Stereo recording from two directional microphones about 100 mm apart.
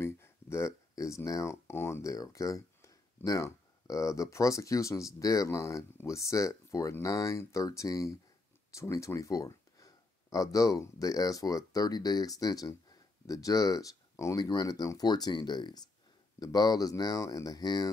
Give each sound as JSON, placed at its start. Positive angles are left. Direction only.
{"t": 0.0, "sound": "speech", "side_deg": 25}
{"t": 14.4, "sound": "speech", "side_deg": 45}